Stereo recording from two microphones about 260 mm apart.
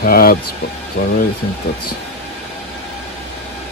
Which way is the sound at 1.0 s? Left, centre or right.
Left.